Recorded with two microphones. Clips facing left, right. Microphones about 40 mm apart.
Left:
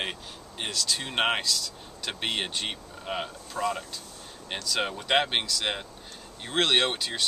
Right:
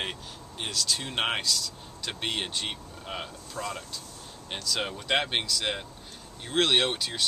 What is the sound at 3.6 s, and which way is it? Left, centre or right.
Speech, left.